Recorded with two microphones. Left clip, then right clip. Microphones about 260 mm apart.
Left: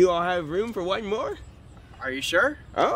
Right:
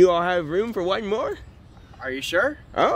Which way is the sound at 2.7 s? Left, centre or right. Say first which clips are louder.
Right 3 dB; right.